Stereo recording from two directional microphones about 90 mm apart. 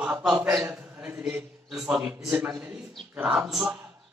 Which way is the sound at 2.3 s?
20° right (ahead or behind).